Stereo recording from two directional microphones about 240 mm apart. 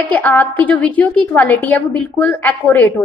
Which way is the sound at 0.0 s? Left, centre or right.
Centre.